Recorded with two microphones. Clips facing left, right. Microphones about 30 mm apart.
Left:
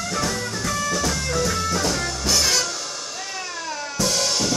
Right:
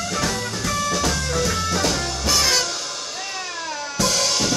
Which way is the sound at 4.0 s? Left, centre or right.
Right.